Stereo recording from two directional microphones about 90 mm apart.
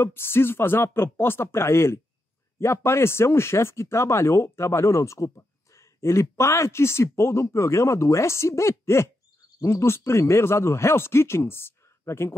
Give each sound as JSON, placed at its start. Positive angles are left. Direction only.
{"t": 0.0, "sound": "speech", "side_deg": 25}